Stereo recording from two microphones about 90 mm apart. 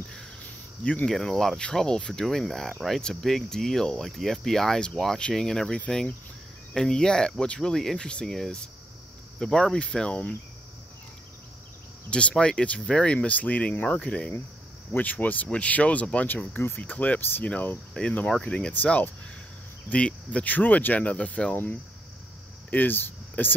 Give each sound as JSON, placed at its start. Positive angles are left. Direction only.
{"t": 1.0, "sound": "speech", "side_deg": 5}
{"t": 12.1, "sound": "speech", "side_deg": 10}
{"t": 22.7, "sound": "speech", "side_deg": 20}